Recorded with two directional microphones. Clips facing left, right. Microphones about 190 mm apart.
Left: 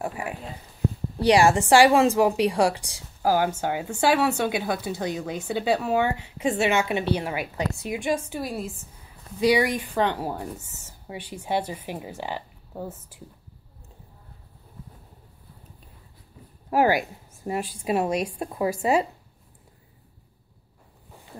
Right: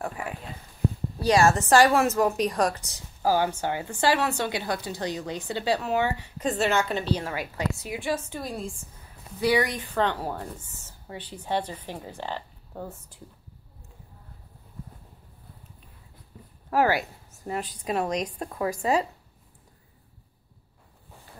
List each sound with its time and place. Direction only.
1.3 s a woman's voice: 15° left (ahead or behind)
16.7 s a woman's voice: 15° left (ahead or behind)